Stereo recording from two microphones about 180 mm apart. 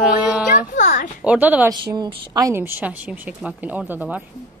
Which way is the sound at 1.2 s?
5° right (ahead or behind).